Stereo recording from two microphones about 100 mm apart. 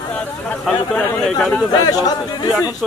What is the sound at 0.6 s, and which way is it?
Speech, 5° left (ahead or behind).